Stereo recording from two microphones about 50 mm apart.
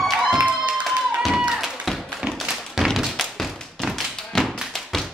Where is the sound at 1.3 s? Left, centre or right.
Centre.